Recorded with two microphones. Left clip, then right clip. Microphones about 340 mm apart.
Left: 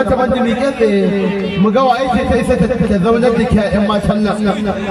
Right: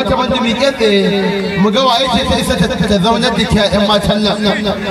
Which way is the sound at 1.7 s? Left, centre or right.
Right.